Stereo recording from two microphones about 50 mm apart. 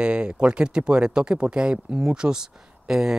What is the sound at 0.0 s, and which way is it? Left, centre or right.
Speech, right.